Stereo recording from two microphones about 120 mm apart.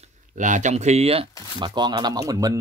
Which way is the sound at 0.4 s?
90° right.